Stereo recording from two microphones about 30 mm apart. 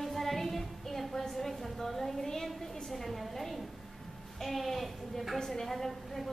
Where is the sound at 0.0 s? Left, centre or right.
Centre.